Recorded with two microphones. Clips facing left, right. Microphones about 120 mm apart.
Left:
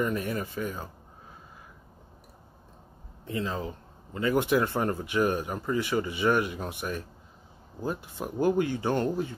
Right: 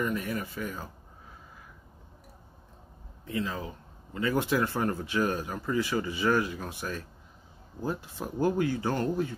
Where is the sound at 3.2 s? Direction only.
30° left (ahead or behind).